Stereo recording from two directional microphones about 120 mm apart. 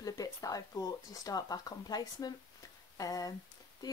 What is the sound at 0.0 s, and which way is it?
Speech, 30° left (ahead or behind).